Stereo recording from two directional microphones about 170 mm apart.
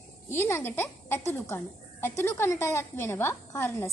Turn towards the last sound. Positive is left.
turn(degrees=15)  # may be behind; listen again after turning